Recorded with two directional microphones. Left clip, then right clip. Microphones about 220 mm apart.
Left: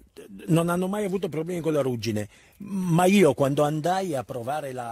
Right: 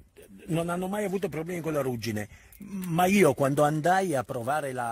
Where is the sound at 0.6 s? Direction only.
50° left (ahead or behind).